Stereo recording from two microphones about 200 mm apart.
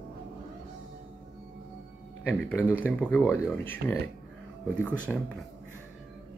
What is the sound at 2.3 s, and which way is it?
Speech, 10° left (ahead or behind).